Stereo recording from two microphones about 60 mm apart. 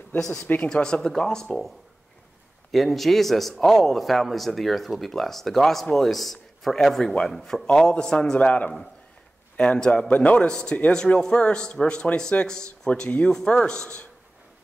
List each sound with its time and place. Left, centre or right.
0.7 s a man's voice: centre
2.7 s a man's voice: centre
10.1 s a man's voice: left